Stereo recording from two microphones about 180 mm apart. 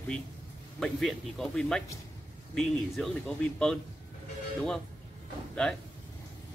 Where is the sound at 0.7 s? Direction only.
Centre (ahead or behind).